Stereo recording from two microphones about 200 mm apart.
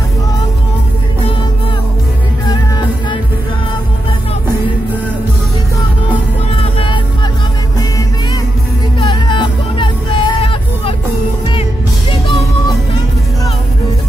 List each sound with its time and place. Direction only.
6.6 s music: 25° left (ahead or behind)
9.0 s music: 25° left (ahead or behind)